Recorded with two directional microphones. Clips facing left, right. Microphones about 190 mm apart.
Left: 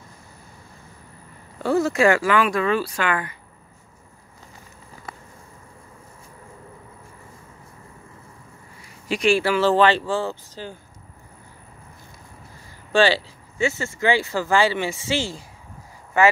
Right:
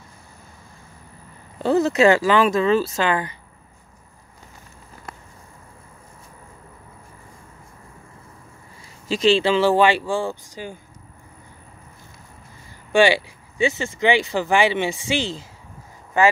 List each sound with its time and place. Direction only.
1.6 s speech: 20° right (ahead or behind)
9.1 s speech: 25° right (ahead or behind)
12.9 s speech: 15° right (ahead or behind)